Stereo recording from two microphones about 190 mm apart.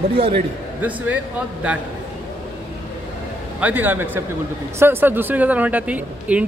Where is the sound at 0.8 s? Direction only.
10° right (ahead or behind).